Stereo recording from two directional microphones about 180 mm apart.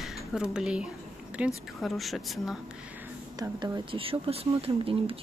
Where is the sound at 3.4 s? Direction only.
25° right (ahead or behind).